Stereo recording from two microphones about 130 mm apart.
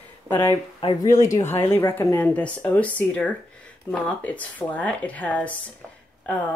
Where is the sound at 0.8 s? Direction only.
45° left (ahead or behind).